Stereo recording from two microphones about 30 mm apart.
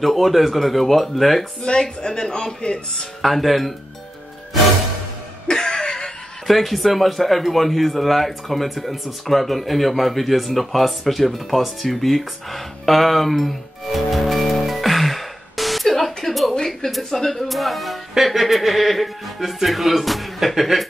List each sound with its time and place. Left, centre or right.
0.0 s speech: centre
1.6 s a man's voice: left
3.2 s speech: centre
5.5 s a sound: left
6.4 s speech: centre
14.7 s music: centre
16.5 s a sound: centre
16.9 s a woman's voice: centre